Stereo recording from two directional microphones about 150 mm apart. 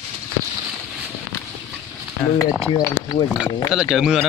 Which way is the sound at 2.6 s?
25° left (ahead or behind).